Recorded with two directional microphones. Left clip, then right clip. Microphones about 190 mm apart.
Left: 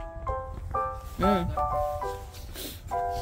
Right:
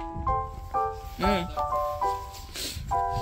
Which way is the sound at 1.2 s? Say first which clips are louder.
Left 1 dB; 20° left (ahead or behind).